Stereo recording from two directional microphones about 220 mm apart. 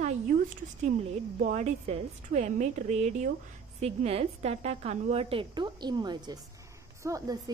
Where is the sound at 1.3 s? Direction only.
35° right (ahead or behind); by 7.4 s 15° right (ahead or behind).